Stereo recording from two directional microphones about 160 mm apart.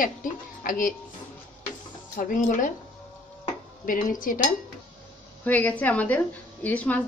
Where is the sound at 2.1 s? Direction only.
55° left (ahead or behind).